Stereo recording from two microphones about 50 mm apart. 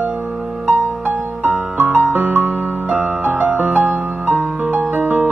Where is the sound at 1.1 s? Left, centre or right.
Right.